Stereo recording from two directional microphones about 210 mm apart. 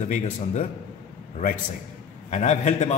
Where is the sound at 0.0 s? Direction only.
35° left (ahead or behind).